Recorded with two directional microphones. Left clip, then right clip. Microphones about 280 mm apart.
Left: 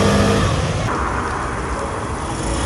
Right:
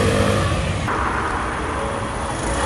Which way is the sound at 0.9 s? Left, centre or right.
Right.